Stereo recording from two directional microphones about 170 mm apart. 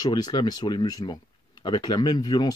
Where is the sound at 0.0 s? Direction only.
25° left (ahead or behind).